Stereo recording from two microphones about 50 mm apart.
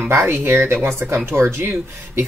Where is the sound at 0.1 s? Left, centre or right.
Right.